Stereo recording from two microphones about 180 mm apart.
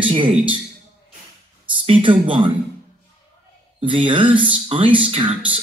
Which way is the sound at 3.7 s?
30° right (ahead or behind).